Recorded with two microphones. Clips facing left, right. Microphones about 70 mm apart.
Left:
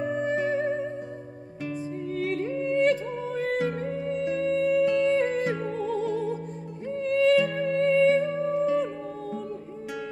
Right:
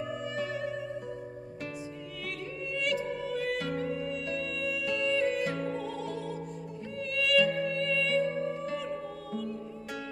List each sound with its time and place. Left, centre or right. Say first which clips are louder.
0.0 s music: left 8 dB; left
2.1 s music: left 12 dB; left